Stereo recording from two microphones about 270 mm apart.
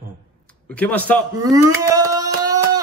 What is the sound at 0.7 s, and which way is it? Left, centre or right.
Speech, centre.